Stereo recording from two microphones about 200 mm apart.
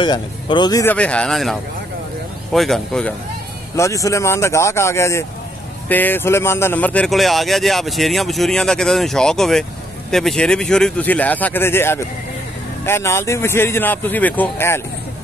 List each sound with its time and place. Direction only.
0.0 s speech: 25° left (ahead or behind)
0.9 s a man's voice: 5° left (ahead or behind)
3.7 s a man's voice: 15° left (ahead or behind)